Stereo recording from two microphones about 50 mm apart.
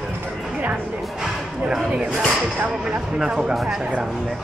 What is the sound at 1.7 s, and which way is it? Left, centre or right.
Speech, centre.